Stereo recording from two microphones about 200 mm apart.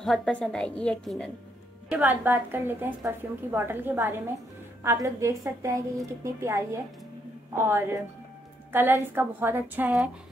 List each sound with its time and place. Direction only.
0.0 s a woman's voice: centre (ahead or behind)
1.9 s a woman's voice: 10° right (ahead or behind)